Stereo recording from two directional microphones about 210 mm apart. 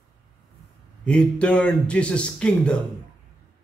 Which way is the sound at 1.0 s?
5° left (ahead or behind).